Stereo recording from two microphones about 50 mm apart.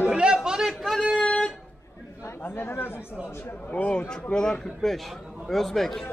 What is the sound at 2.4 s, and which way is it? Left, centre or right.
Speech, left.